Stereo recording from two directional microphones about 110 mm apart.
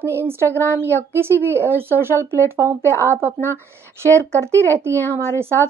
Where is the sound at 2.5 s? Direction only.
20° right (ahead or behind).